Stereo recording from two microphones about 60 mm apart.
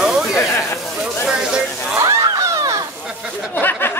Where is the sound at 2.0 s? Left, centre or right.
Right.